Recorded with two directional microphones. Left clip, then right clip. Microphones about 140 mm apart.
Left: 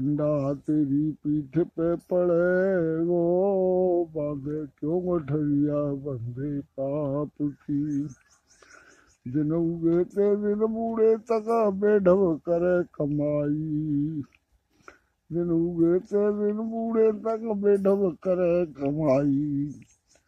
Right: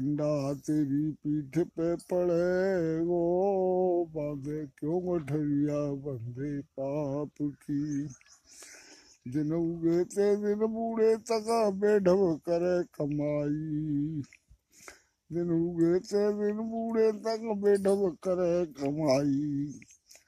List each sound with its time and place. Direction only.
0.1 s mantra: 15° right (ahead or behind)
9.3 s mantra: 20° right (ahead or behind)
14.9 s speech: 20° right (ahead or behind)
18.8 s mantra: 15° right (ahead or behind)